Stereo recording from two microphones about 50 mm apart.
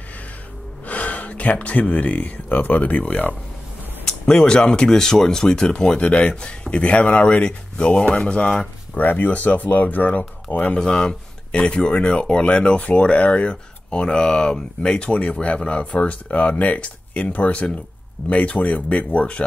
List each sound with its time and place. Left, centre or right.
0.8 s speech: left
4.0 s speech: centre
8.9 s speech: left
10.8 s speech: centre